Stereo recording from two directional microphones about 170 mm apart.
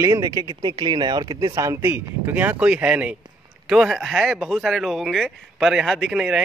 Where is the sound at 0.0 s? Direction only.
20° right (ahead or behind).